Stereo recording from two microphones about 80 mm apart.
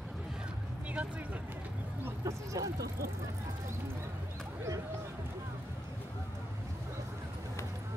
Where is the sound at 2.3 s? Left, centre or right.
Right.